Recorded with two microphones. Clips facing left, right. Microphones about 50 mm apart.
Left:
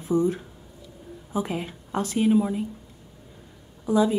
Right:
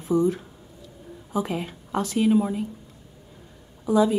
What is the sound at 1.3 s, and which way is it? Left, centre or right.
A woman's voice, left.